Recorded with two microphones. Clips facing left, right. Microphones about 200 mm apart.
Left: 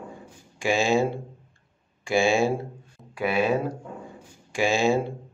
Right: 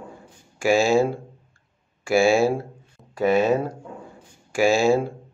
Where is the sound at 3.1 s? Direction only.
40° right (ahead or behind).